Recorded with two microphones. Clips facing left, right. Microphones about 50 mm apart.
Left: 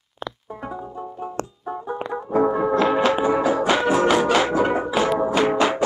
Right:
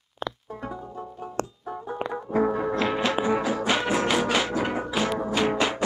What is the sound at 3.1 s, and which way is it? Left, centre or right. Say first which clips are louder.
Music: left 5 dB; centre.